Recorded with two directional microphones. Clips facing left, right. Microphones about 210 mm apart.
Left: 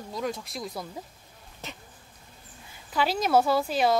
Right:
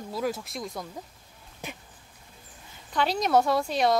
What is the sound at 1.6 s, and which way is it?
Speech, 15° right (ahead or behind).